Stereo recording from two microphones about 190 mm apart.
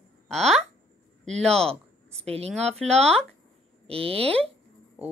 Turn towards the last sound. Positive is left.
turn(degrees=-30)  # may be behind; listen again after turning